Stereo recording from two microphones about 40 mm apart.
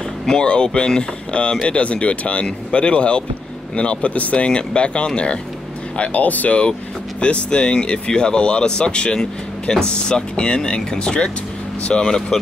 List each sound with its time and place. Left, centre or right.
0.3 s speech: left
5.9 s speech: left
7.2 s speech: left